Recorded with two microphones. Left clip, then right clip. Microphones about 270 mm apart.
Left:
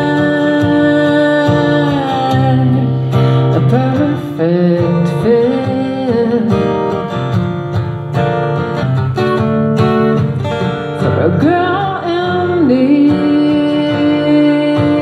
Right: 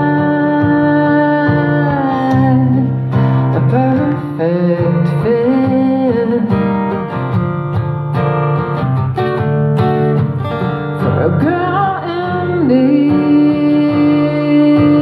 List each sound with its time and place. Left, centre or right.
0.0 s music: left
4.4 s music: left
9.8 s music: left
11.3 s music: left